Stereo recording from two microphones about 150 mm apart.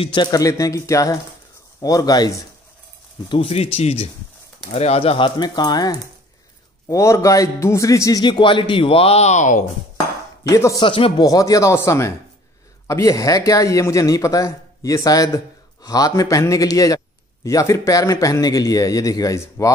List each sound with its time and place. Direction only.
0.0 s a man's voice: 30° left (ahead or behind)
3.3 s a man's voice: 40° left (ahead or behind)
10.4 s a man's voice: 20° left (ahead or behind)
10.8 s a man's voice: 35° left (ahead or behind)
11.2 s a man's voice: 25° left (ahead or behind)